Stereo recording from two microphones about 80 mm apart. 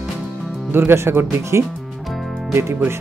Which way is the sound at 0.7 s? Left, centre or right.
Right.